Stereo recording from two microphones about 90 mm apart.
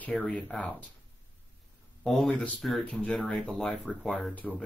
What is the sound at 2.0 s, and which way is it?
Speech, 5° left (ahead or behind).